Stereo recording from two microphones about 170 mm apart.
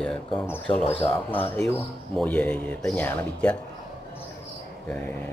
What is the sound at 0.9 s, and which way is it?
Speech, 10° left (ahead or behind).